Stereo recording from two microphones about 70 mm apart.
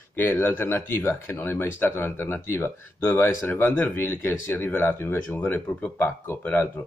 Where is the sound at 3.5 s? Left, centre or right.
Left.